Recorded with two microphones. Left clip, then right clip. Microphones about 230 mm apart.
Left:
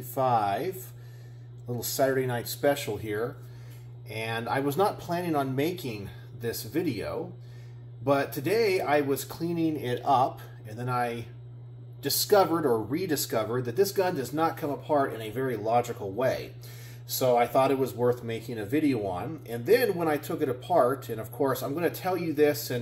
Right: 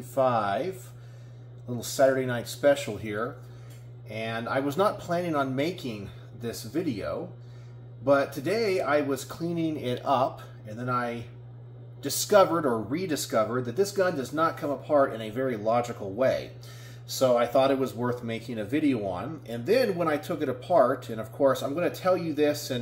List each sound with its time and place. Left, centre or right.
0.0 s speech: centre